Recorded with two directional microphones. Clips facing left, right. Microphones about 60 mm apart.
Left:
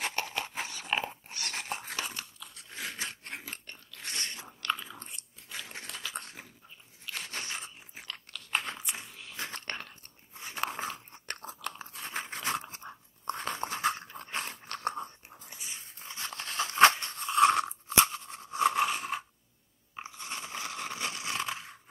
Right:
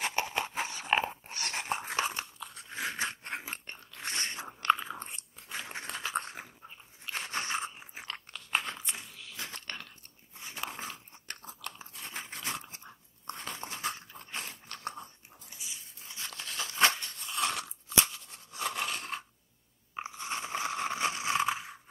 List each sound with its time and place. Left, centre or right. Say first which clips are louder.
0.1 s a sound: right 3 dB; centre
2.7 s biting: right 4 dB; right
7.9 s crunch: right 2 dB; centre
8.5 s crunch: even; centre
9.5 s biting: left 3 dB; left
10.4 s biting: left 5 dB; left
15.6 s a sound: left 2 dB; left
18.9 s scrape: left 4 dB; centre
20.0 s crunch: right 4 dB; right